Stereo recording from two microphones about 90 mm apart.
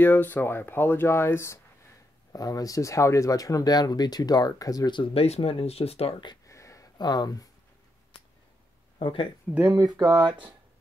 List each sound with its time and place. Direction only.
0.0 s speech: 20° left (ahead or behind)
2.3 s speech: 45° left (ahead or behind)
4.9 s speech: 85° left
6.4 s a sound: 35° left (ahead or behind)
7.0 s speech: 50° left (ahead or behind)
9.0 s speech: 70° left (ahead or behind)
9.9 s speech: 55° right (ahead or behind)